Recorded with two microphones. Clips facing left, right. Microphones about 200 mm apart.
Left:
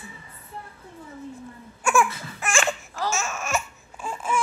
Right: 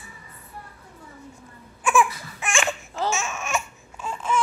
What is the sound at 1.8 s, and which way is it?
Baby cry, centre (ahead or behind).